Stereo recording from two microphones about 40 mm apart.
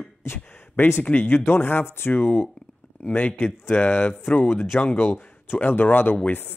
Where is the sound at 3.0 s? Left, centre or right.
Left.